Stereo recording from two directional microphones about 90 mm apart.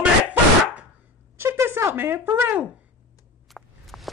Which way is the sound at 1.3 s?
30° right (ahead or behind).